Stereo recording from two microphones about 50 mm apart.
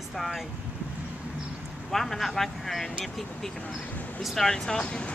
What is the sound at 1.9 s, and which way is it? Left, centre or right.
Speech, centre.